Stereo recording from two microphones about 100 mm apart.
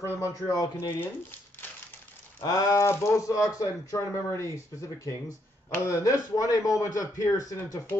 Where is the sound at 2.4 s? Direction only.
35° left (ahead or behind).